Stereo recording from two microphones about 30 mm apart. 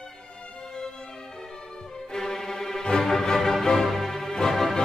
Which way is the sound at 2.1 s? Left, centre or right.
Centre.